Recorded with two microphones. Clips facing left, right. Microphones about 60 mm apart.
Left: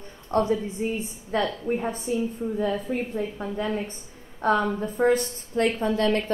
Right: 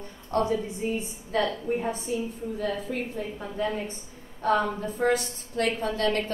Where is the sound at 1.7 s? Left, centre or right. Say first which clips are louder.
Left 2 dB; left.